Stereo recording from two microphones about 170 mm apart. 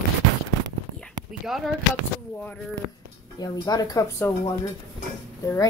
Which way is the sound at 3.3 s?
25° left (ahead or behind).